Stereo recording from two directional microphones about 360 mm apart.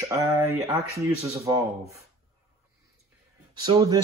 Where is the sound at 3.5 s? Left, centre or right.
Centre.